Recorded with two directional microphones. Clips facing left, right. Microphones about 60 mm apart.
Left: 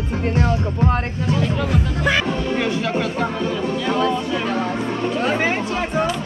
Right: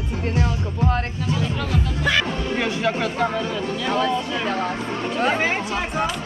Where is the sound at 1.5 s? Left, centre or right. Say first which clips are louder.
Left 3 dB; centre.